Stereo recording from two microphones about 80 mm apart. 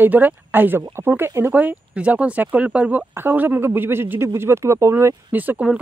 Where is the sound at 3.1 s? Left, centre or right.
Right.